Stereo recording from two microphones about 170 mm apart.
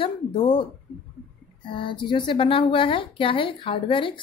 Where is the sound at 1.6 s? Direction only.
30° left (ahead or behind).